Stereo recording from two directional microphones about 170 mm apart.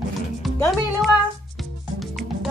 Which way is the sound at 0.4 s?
Centre (ahead or behind).